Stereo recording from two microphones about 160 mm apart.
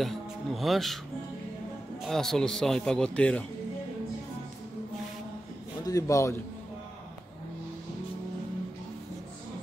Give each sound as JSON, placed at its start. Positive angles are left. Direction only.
{"t": 0.0, "sound": "speech", "side_deg": 0}
{"t": 2.0, "sound": "a man's voice", "side_deg": 0}
{"t": 5.9, "sound": "a man's voice", "side_deg": 20}